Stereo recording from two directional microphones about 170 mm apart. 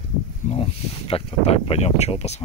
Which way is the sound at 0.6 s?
35° left (ahead or behind).